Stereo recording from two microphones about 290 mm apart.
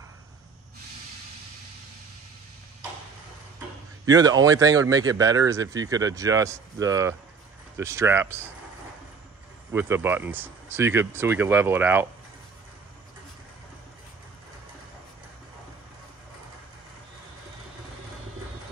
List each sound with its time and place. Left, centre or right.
4.0 s speech: centre
9.7 s speech: centre